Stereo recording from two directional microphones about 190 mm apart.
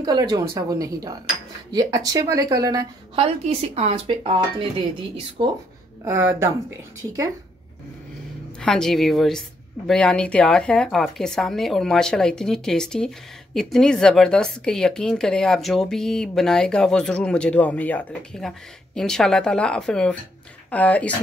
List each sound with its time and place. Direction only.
0.0 s a woman's voice: 20° right (ahead or behind)
3.4 s a woman's voice: 30° right (ahead or behind)
6.0 s speech: 10° right (ahead or behind)
8.5 s speech: 5° left (ahead or behind)